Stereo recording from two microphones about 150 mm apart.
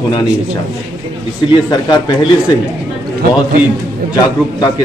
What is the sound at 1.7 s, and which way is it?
Speech, 30° left (ahead or behind).